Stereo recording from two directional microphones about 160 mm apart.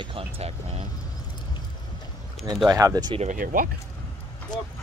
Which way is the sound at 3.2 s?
55° right (ahead or behind).